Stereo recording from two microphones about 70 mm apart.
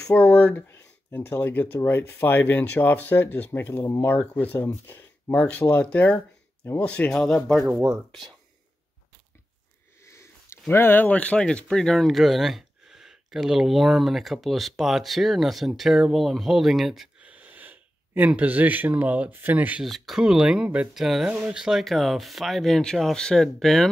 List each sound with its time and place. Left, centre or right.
0.1 s speech: left; by 7.6 s centre
10.0 s a sound: left
10.7 s speech: left; by 17.1 s centre
17.2 s speech: right
19.8 s speech: centre
20.9 s speech: centre